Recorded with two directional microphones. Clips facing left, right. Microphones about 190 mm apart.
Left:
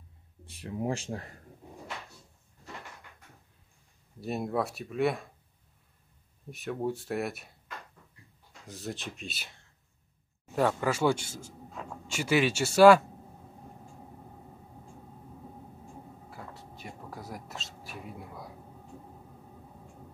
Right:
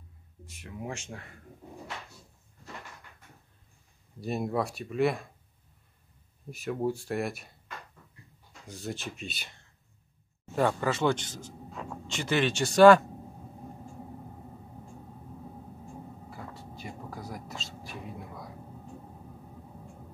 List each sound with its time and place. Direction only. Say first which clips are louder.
0.5 s speech: left 6 dB; 30° left (ahead or behind)
4.2 s speech: right 1 dB; centre (ahead or behind)
6.5 s speech: right 2 dB; centre (ahead or behind)
8.6 s speech: right 1 dB; centre (ahead or behind)
16.3 s a sound: right 2 dB; centre (ahead or behind)